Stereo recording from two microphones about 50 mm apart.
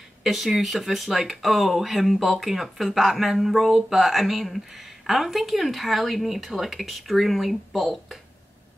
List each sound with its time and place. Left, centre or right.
0.2 s speech: centre